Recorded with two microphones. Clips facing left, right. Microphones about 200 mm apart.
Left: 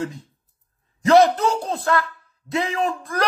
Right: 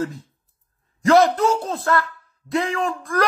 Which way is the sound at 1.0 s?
Centre (ahead or behind).